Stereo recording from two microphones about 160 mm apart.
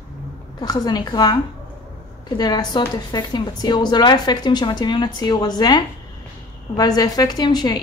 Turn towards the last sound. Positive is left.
turn(degrees=25)  # may be behind; listen again after turning